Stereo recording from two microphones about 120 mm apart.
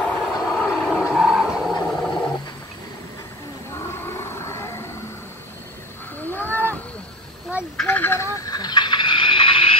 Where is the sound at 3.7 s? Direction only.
20° left (ahead or behind).